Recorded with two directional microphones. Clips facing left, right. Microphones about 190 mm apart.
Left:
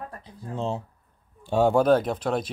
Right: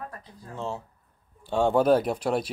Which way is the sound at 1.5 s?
10° left (ahead or behind).